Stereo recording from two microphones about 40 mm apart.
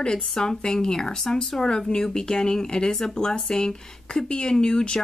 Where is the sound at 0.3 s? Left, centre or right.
Centre.